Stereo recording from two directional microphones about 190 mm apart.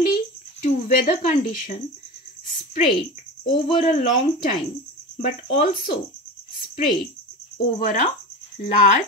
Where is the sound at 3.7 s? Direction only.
35° left (ahead or behind).